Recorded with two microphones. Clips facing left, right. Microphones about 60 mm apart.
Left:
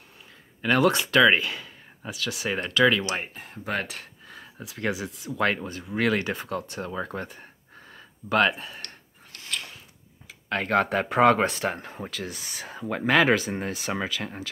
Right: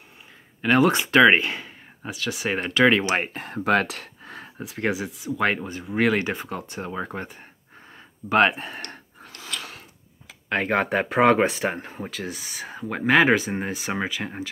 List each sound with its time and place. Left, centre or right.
0.7 s speech: right
3.2 s speech: right
4.2 s a sound: right
4.6 s speech: right
8.9 s a sound: right
10.5 s speech: centre